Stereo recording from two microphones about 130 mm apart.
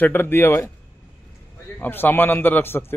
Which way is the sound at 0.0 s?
15° left (ahead or behind).